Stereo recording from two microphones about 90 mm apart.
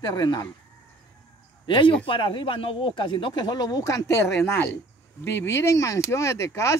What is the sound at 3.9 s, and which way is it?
Speech, 30° left (ahead or behind).